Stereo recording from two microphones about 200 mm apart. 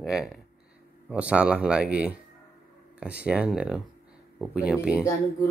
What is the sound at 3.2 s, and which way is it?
Speech, 5° right (ahead or behind).